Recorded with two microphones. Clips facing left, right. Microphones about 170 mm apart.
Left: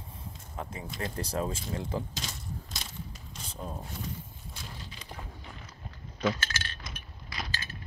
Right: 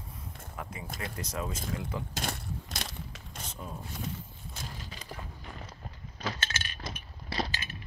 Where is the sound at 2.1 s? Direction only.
55° right (ahead or behind).